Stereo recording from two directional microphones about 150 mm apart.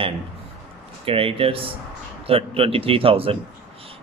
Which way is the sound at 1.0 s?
40° right (ahead or behind).